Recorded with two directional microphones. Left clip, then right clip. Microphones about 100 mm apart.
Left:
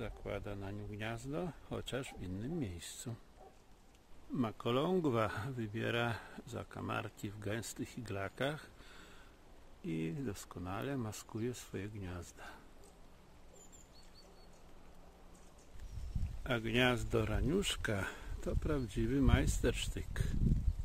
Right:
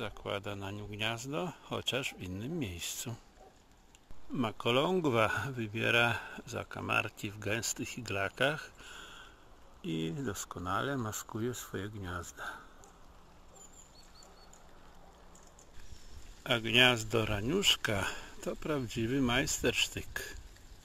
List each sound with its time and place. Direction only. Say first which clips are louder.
0.0 s speech: right 6 dB; centre (ahead or behind)
4.4 s speech: right 5 dB; 5° left (ahead or behind)
9.8 s speech: right 4 dB; 20° right (ahead or behind)
16.4 s speech: right 7 dB; 10° left (ahead or behind)